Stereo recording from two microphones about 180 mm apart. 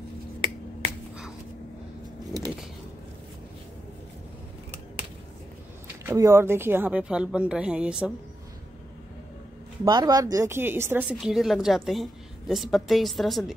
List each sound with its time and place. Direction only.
6.0 s a woman's voice: 15° right (ahead or behind)
9.8 s a woman's voice: 20° right (ahead or behind); by 13.5 s centre (ahead or behind)